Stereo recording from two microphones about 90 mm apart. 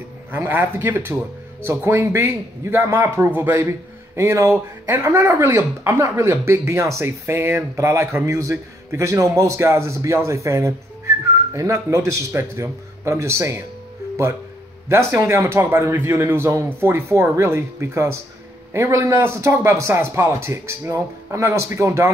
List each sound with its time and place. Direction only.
0.4 s a man's voice: 25° right (ahead or behind)
14.9 s a man's voice: 30° right (ahead or behind)